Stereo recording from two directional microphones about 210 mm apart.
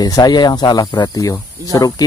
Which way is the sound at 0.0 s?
20° left (ahead or behind).